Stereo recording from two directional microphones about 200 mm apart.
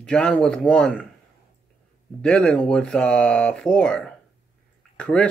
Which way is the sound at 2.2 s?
5° left (ahead or behind).